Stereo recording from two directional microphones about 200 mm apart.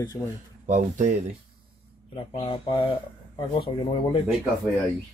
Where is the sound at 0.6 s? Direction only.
40° right (ahead or behind).